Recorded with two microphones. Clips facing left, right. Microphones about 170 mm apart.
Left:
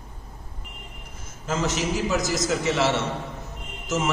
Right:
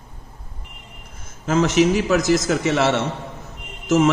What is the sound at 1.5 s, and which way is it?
A man's voice, 65° right (ahead or behind).